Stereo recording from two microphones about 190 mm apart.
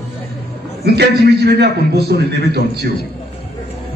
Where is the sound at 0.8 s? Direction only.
60° right (ahead or behind).